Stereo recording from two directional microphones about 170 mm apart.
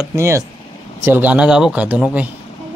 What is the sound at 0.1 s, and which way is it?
Mantra, 15° right (ahead or behind).